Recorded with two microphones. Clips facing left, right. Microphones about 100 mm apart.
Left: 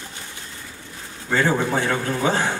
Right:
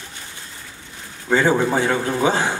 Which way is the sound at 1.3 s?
15° right (ahead or behind).